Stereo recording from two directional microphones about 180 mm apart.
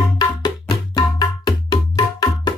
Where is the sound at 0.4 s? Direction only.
25° left (ahead or behind).